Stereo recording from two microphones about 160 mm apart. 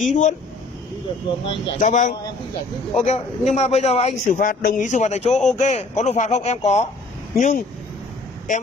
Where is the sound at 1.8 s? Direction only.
50° left (ahead or behind).